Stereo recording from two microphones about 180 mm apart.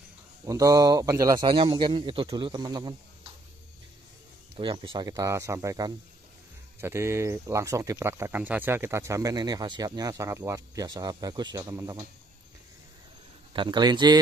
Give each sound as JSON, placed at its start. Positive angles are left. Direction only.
{"t": 0.5, "sound": "a man's voice", "side_deg": -20}
{"t": 4.6, "sound": "a man's voice", "side_deg": -25}
{"t": 13.5, "sound": "a man's voice", "side_deg": -25}